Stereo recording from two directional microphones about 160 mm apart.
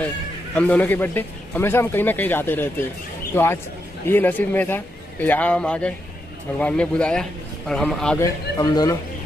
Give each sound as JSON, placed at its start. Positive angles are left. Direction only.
{"t": 0.6, "sound": "a man's voice", "side_deg": 10}
{"t": 4.1, "sound": "a man's voice", "side_deg": 10}
{"t": 8.2, "sound": "speech", "side_deg": 20}